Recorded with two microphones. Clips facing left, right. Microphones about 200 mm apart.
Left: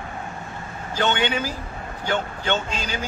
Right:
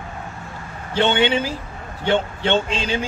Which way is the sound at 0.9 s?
25° right (ahead or behind).